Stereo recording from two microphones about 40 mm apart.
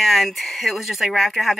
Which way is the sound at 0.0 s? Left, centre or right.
Centre.